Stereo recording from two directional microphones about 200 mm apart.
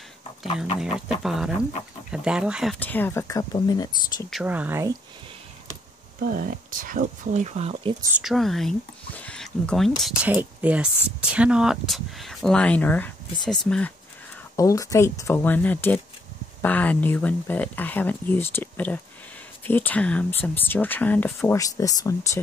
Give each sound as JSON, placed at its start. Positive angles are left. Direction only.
{"t": 0.7, "sound": "speech", "side_deg": 0}
{"t": 4.3, "sound": "speech", "side_deg": -5}
{"t": 6.2, "sound": "speech", "side_deg": -45}
{"t": 8.2, "sound": "speech", "side_deg": 0}
{"t": 14.6, "sound": "speech", "side_deg": 15}